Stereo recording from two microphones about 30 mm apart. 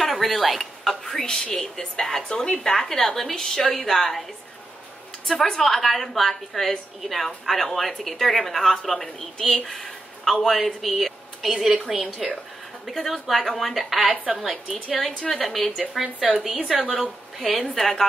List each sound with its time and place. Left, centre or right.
0.0 s a sound: centre
1.2 s speech: left
5.3 s speech: left
5.6 s speech: centre
9.7 s a sound: centre
10.4 s speech: centre
11.9 s a woman's voice: centre
12.8 s speech: centre
14.9 s speech: centre
16.3 s a woman's voice: centre
17.6 s speech: centre